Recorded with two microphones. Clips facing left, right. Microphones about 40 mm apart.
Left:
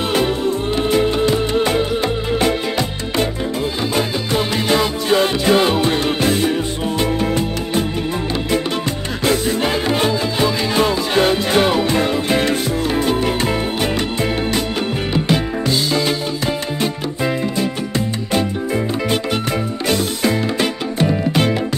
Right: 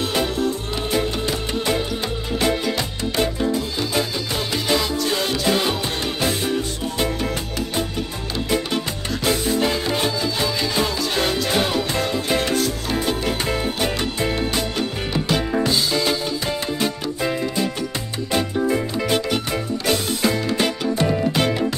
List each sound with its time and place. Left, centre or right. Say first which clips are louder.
1.3 s music: left 6 dB; left
4.3 s music: left 6 dB; left
9.7 s music: left 4 dB; left